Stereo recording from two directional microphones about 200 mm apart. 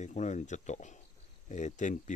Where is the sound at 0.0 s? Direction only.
35° left (ahead or behind).